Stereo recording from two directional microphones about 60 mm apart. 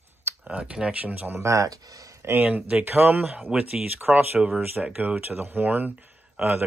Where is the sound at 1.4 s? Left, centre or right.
Right.